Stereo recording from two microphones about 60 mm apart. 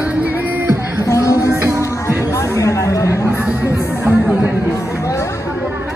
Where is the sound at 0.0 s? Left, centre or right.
Right.